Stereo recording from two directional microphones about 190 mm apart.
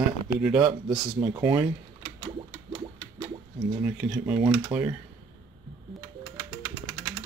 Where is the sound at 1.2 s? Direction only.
25° right (ahead or behind).